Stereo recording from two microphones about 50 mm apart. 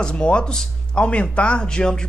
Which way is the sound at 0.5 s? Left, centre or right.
Centre.